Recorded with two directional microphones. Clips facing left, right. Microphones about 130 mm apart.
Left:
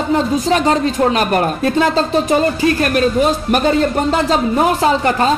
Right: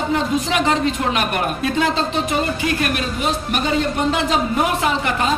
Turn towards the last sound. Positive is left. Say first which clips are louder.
# left 6 dB
turn(degrees=35)  # may be behind; listen again after turning